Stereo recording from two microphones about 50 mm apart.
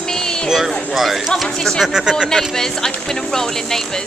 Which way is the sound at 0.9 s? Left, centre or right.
Centre.